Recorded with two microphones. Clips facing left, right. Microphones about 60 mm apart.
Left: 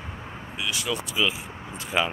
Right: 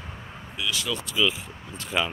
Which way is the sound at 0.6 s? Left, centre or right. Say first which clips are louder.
Even; left.